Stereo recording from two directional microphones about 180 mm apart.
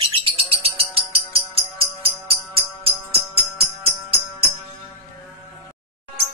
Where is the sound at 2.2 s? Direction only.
30° right (ahead or behind).